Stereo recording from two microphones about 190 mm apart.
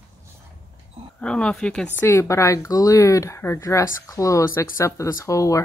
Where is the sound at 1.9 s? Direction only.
15° left (ahead or behind).